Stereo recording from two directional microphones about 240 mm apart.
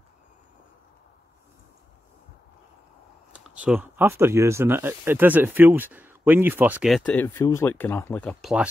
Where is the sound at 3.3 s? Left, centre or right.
Centre.